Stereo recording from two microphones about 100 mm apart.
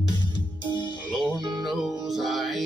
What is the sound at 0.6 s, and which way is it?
Music, 50° left (ahead or behind).